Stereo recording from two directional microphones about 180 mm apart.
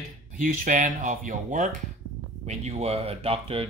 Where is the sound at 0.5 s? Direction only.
45° right (ahead or behind).